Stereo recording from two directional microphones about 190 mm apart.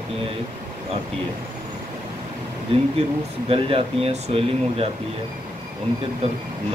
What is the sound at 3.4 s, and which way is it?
Speech, 30° right (ahead or behind).